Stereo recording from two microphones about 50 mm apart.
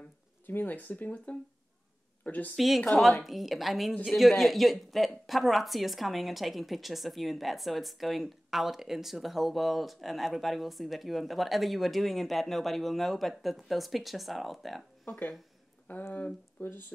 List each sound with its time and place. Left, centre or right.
0.5 s speech: left
2.2 s speech: left
2.5 s speech: centre
15.9 s speech: left